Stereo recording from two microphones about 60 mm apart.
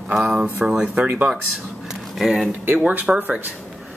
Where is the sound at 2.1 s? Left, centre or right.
Centre.